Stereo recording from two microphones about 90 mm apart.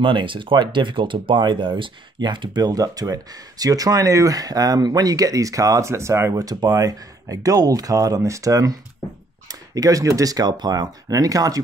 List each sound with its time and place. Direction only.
0.0 s speech: 70° right (ahead or behind); by 6.4 s 30° right (ahead or behind)
6.4 s speech: 45° right (ahead or behind)